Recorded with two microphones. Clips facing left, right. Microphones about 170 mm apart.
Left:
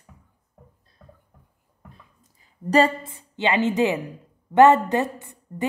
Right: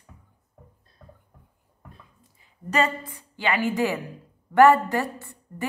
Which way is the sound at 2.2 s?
35° left (ahead or behind).